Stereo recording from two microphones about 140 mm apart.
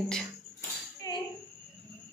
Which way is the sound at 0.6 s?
25° left (ahead or behind).